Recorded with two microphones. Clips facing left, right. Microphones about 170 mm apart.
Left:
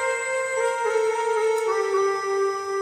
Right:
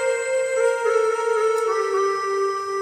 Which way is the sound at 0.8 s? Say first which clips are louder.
Right 3 dB; 25° left (ahead or behind).